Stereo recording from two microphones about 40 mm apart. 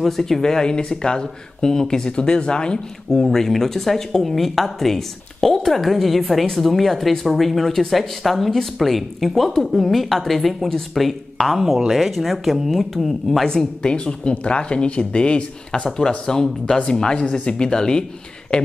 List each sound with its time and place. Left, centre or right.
0.0 s speech: centre
3.1 s a woman's voice: centre
13.5 s speech: left